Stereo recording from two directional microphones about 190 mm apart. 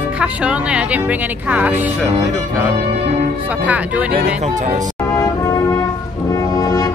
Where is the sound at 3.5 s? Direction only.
5° right (ahead or behind).